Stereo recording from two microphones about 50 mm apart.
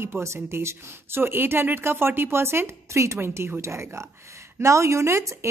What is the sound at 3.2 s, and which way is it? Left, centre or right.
Speech, right.